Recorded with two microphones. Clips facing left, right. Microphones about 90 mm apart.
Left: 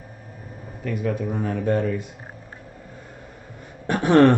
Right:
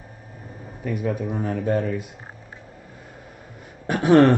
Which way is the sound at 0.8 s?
10° right (ahead or behind).